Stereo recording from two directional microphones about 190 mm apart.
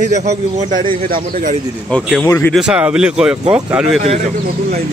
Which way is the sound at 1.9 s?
5° left (ahead or behind).